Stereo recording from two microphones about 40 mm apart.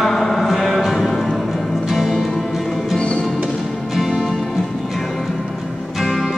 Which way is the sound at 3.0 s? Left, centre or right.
Left.